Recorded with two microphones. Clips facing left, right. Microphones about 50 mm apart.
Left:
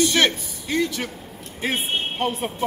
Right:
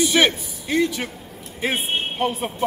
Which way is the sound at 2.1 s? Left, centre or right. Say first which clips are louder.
Right 2 dB; centre.